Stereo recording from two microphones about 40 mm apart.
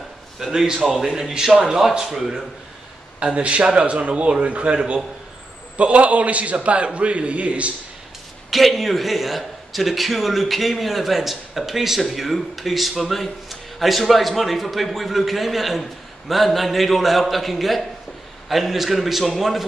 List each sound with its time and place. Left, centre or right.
0.5 s a man's voice: centre
3.2 s speech: right
5.8 s a man's voice: right
8.5 s a man's voice: centre